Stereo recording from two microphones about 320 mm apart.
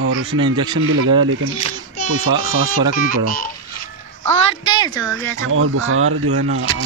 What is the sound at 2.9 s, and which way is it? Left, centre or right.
Speech, left.